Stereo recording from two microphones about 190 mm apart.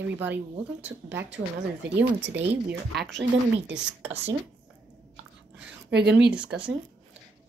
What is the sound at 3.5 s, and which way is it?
Speech, 5° right (ahead or behind).